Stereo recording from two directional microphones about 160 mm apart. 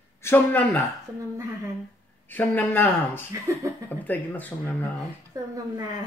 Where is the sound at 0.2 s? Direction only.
15° left (ahead or behind).